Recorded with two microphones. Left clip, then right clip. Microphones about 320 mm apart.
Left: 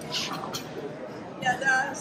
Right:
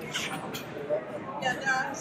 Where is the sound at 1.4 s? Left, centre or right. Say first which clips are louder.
Left 4 dB; left.